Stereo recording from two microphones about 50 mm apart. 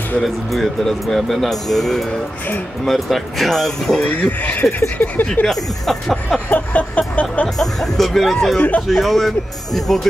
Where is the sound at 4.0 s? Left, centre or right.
Left.